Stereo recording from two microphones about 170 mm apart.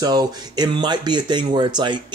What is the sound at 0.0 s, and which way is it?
Speech, 25° right (ahead or behind).